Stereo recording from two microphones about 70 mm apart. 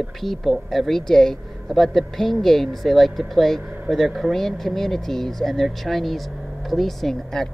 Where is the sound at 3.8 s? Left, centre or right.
Centre.